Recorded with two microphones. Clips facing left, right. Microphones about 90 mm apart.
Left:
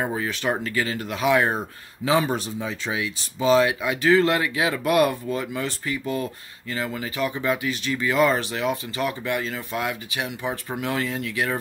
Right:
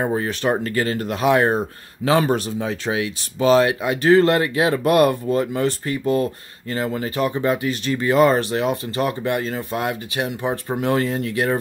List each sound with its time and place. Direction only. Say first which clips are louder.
0.0 s speech: right 4 dB; 35° right (ahead or behind)
2.3 s speech: right 5 dB; 60° right (ahead or behind); by 11.5 s 40° right (ahead or behind)